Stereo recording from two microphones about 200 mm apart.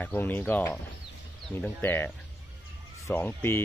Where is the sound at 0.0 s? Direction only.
10° left (ahead or behind).